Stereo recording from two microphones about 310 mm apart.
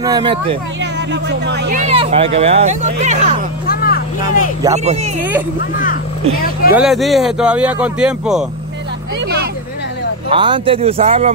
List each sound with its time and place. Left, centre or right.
0.0 s speech: centre
1.1 s speech: right
3.6 s vehicle: left
4.7 s speech: right
6.7 s speech: centre
10.3 s speech: centre